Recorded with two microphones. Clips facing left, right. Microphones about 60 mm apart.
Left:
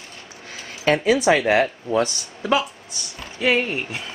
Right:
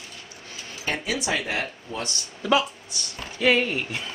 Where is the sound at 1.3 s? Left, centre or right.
Left.